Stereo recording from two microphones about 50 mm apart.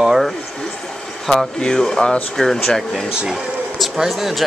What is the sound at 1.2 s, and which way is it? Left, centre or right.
Speech, centre.